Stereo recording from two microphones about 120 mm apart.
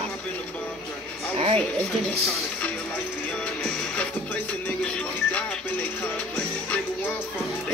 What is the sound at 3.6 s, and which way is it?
Music, 10° left (ahead or behind).